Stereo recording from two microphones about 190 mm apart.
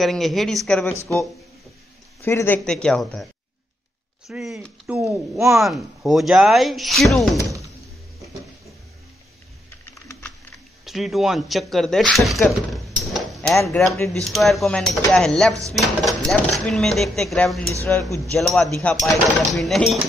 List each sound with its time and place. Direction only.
0.0 s speech: centre (ahead or behind)
0.8 s speech: 15° left (ahead or behind)
2.2 s speech: 10° left (ahead or behind)
4.3 s speech: centre (ahead or behind)
9.8 s typing: 15° left (ahead or behind)
10.9 s speech: centre (ahead or behind)